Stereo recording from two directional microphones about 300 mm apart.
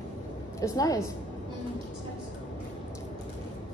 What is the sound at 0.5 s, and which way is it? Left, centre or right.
Speech, centre.